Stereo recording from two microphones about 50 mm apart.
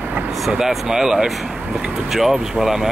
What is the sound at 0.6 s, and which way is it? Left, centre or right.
Speech, centre.